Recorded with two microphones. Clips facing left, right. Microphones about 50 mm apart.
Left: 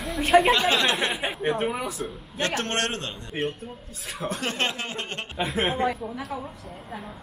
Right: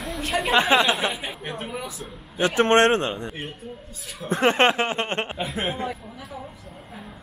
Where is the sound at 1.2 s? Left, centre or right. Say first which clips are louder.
Left 7 dB; centre.